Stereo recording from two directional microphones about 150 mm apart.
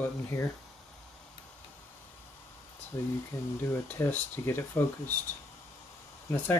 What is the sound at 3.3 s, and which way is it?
Speech, 20° left (ahead or behind).